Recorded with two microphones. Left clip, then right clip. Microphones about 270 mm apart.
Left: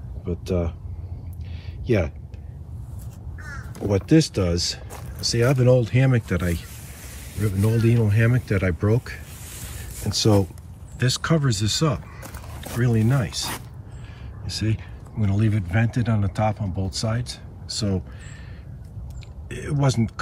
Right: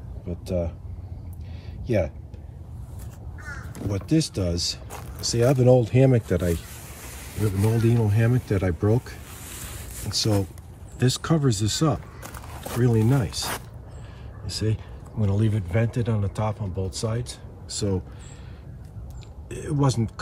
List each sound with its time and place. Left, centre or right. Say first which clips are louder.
0.3 s speech: left 2 dB; centre
1.9 s speech: left 1 dB; centre
3.9 s speech: left 6 dB; centre
7.3 s a man's voice: even; right
7.8 s speech: left 4 dB; centre
9.0 s a sound: left 3 dB; centre
10.0 s speech: left 5 dB; centre
11.0 s speech: left 1 dB; centre
19.5 s speech: left 1 dB; centre